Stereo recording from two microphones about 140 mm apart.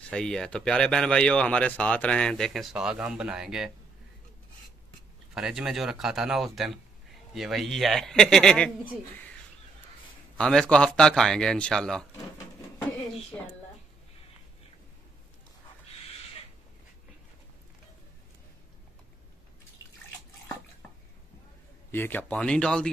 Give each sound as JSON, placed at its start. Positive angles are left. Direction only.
{"t": 0.1, "sound": "speech", "side_deg": 5}
{"t": 5.3, "sound": "speech", "side_deg": -5}
{"t": 10.3, "sound": "speech", "side_deg": 5}
{"t": 13.3, "sound": "a woman's voice", "side_deg": 15}
{"t": 21.9, "sound": "speech", "side_deg": 15}